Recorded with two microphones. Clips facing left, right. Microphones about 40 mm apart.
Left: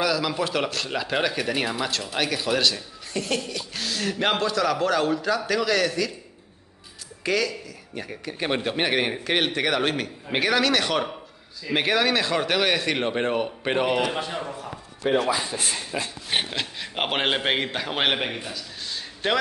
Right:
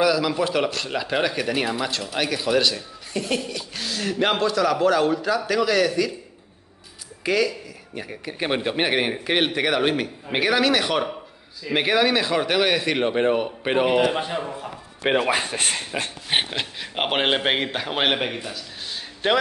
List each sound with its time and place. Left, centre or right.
0.0 s speech: centre
7.2 s a man's voice: centre
15.0 s speech: right
16.4 s a man's voice: centre